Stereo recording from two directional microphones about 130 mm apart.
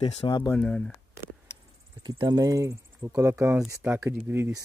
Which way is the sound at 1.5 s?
20° left (ahead or behind).